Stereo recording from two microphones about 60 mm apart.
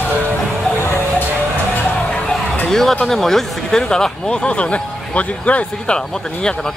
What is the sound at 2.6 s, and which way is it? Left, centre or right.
Speech, centre.